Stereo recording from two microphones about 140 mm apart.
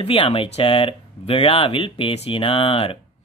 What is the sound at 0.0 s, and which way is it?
Speech, 40° left (ahead or behind).